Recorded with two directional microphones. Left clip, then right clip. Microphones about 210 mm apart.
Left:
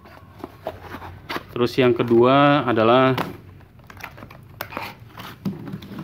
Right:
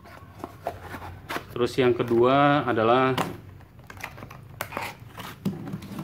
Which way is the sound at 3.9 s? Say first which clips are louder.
Left 1 dB; 15° left (ahead or behind).